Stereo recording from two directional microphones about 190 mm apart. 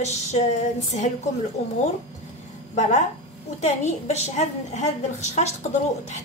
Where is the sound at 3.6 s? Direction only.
35° left (ahead or behind).